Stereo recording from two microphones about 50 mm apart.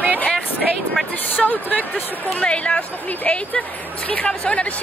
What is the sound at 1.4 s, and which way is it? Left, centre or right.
A woman's voice, left.